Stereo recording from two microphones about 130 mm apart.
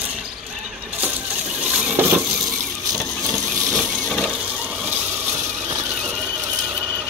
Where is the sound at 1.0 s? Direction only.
10° right (ahead or behind).